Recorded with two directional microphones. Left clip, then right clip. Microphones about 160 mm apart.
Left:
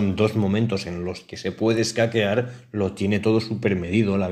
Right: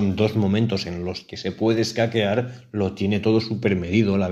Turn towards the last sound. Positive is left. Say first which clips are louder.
# right 1 dB
turn(degrees=-5)  # may be behind; listen again after turning